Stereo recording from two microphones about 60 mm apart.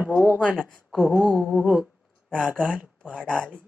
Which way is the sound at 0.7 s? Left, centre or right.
Centre.